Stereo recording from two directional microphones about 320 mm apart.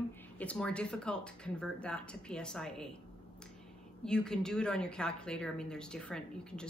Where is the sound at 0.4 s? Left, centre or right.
Centre.